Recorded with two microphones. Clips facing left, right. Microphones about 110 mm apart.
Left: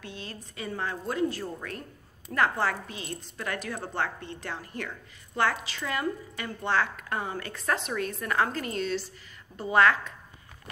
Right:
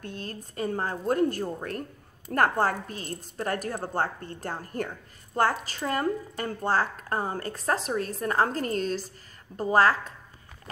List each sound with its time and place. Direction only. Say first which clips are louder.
0.0 s a woman's voice: right 3 dB; 45° right (ahead or behind)